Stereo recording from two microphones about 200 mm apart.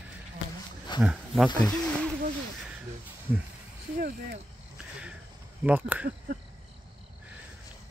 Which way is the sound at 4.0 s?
45° right (ahead or behind).